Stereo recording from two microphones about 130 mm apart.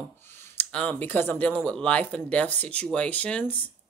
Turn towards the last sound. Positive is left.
turn(degrees=10)  # may be behind; listen again after turning